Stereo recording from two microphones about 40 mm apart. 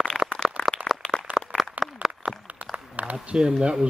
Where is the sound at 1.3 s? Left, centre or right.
Right.